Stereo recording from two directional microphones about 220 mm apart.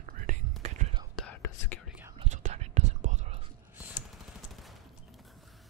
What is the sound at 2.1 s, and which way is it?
Whispering, 30° right (ahead or behind).